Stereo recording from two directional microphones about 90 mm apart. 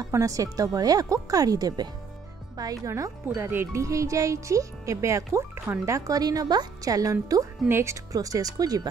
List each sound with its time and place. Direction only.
0.1 s speech: 40° right (ahead or behind)
3.3 s speech: 25° right (ahead or behind); by 7.4 s 40° right (ahead or behind)
7.6 s speech: 30° right (ahead or behind)